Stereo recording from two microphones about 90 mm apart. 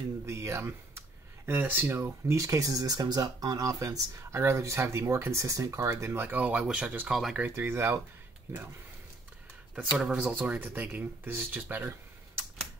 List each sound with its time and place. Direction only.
0.3 s speech: 30° right (ahead or behind); by 7.1 s 15° right (ahead or behind)
7.1 s speech: centre (ahead or behind)
7.4 s speech: 25° right (ahead or behind)
9.9 s speech: 10° right (ahead or behind)